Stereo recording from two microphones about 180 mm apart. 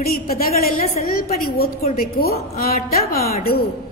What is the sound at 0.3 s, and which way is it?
A woman's voice, 55° left (ahead or behind).